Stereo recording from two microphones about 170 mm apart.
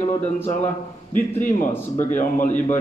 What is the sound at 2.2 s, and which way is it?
Speech, 50° left (ahead or behind).